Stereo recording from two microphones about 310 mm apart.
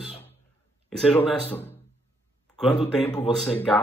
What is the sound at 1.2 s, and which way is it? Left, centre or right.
Speech, centre.